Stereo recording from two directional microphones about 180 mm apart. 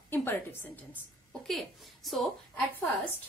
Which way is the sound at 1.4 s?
Centre (ahead or behind).